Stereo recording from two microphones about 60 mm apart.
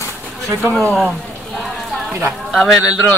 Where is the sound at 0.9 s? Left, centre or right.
Centre.